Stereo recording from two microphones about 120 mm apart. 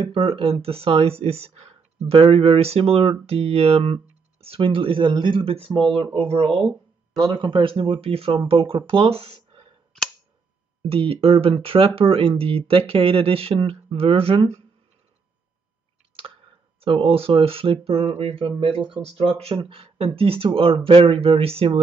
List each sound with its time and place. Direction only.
0.1 s speech: 50° right (ahead or behind)
7.2 s speech: 40° right (ahead or behind)
10.8 s speech: 50° right (ahead or behind)
16.8 s speech: 50° right (ahead or behind)